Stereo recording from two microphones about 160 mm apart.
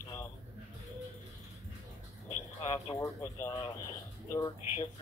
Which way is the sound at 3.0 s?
20° left (ahead or behind).